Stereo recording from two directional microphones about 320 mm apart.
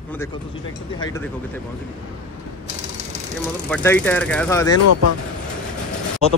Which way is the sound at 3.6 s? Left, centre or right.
Centre.